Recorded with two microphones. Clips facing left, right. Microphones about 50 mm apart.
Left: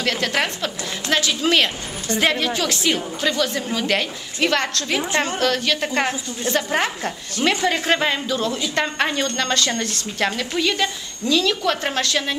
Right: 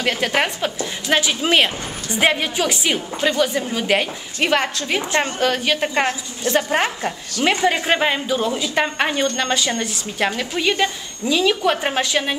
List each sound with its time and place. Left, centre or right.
0.0 s a woman's voice: centre